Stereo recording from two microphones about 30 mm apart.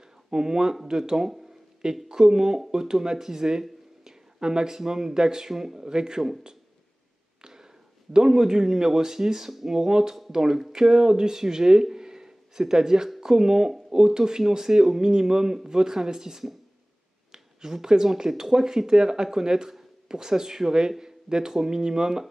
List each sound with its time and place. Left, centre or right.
0.0 s a sound: right
0.8 s a man's voice: right
5.8 s a man's voice: right
7.4 s a man's voice: right